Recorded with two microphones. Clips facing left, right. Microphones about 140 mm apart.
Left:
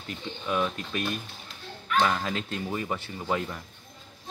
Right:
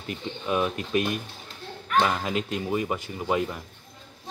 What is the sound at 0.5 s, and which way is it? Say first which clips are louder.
Speech: right 3 dB; 15° right (ahead or behind).